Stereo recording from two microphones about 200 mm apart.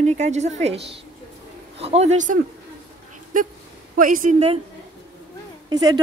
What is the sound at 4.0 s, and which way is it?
Speech, 40° right (ahead or behind).